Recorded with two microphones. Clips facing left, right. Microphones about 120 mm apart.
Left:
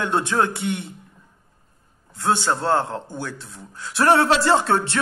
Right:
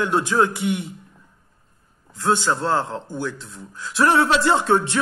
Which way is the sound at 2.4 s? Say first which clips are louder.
Left 1 dB; 30° left (ahead or behind).